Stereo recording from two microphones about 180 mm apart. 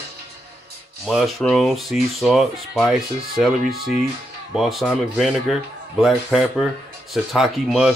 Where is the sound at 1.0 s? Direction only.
Centre (ahead or behind).